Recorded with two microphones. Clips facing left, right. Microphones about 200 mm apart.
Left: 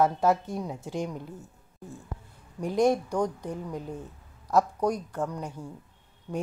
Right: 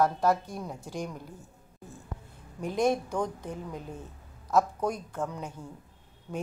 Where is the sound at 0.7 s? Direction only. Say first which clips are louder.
Left 4 dB; 20° left (ahead or behind).